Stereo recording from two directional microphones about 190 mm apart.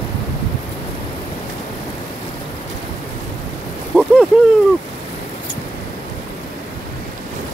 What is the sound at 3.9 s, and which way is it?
Speech, 10° right (ahead or behind).